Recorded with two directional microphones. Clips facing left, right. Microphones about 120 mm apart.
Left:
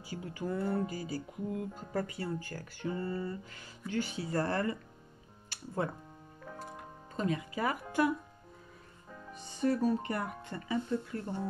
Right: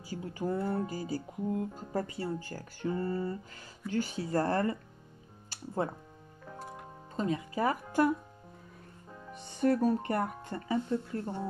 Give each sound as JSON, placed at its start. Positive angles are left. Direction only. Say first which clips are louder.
{"t": 0.1, "sound": "speech", "louder": "right 3 dB", "side_deg": -35}
{"t": 5.5, "sound": "music", "louder": "right 3 dB", "side_deg": -35}
{"t": 7.2, "sound": "speech", "louder": "right 2 dB", "side_deg": -30}
{"t": 9.3, "sound": "speech", "louder": "right 3 dB", "side_deg": -60}